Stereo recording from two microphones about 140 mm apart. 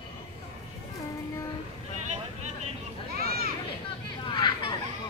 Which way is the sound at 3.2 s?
90° right.